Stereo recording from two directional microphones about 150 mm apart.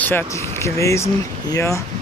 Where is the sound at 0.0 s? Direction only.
10° left (ahead or behind).